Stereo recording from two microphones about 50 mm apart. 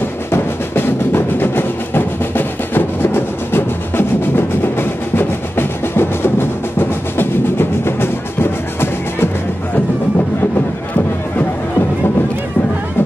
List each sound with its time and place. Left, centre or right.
0.3 s music: left